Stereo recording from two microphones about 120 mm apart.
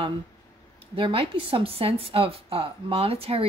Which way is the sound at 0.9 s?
50° right (ahead or behind).